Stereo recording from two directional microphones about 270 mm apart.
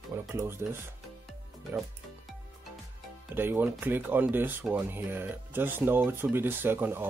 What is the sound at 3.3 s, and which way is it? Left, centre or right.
Speech, centre.